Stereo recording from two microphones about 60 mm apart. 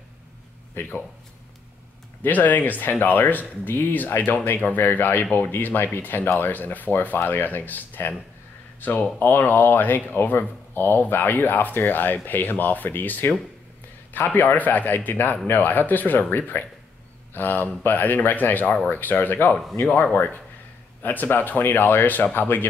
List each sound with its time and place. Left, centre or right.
0.7 s speech: left
2.2 s speech: left
9.2 s speech: left